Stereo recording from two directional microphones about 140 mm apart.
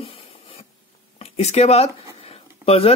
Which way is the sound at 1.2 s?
50° left (ahead or behind).